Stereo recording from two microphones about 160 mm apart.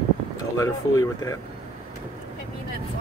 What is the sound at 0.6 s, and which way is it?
Speech, 20° left (ahead or behind).